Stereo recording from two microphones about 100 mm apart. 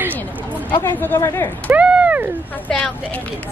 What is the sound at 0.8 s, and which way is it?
Speech, 25° left (ahead or behind).